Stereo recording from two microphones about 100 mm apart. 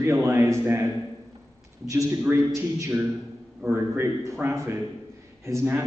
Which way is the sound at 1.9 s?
25° right (ahead or behind).